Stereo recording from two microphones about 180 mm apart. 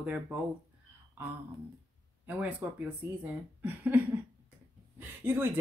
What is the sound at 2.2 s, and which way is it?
Speech, 10° right (ahead or behind).